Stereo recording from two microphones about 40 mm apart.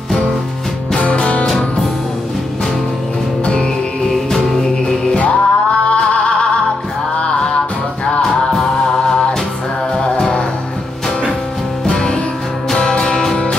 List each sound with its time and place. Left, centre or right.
0.9 s music: left
5.1 s music: left
8.2 s music: centre
11.8 s music: left